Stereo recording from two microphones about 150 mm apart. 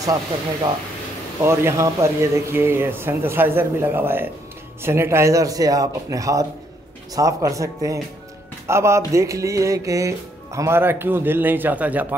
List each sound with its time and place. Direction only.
1.4 s music: 20° right (ahead or behind)
4.8 s speech: 15° right (ahead or behind)
8.6 s music: 20° right (ahead or behind)